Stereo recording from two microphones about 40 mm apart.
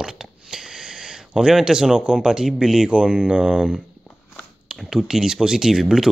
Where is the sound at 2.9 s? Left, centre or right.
Right.